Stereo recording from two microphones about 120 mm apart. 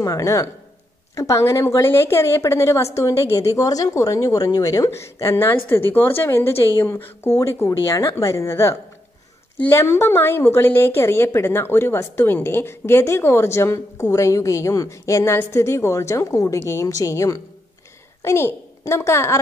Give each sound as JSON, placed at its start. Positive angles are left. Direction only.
{"t": 0.0, "sound": "a woman's voice", "side_deg": 25}